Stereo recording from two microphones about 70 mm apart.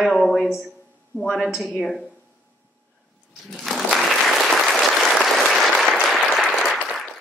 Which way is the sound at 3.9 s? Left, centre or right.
Centre.